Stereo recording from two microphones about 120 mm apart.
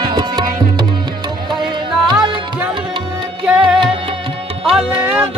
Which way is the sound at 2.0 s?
35° right (ahead or behind).